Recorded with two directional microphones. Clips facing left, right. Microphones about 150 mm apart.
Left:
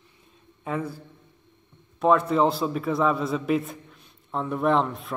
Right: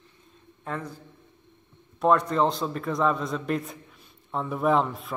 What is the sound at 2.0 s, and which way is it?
A man's voice, centre (ahead or behind).